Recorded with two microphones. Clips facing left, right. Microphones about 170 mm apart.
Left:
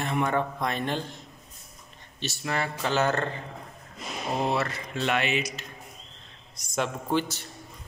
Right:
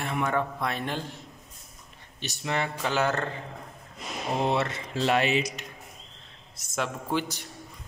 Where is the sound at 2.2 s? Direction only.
15° right (ahead or behind).